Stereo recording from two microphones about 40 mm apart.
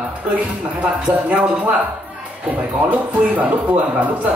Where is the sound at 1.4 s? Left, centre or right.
Right.